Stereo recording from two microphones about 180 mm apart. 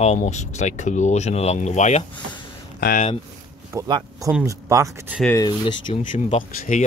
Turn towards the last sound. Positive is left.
turn(degrees=40)  # may be behind; listen again after turning